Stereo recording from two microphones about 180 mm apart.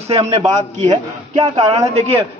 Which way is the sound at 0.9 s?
25° right (ahead or behind).